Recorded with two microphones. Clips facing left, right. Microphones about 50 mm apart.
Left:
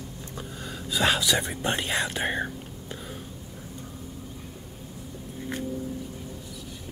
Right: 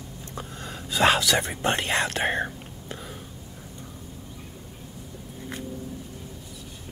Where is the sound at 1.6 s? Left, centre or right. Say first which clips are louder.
Right 4 dB; right.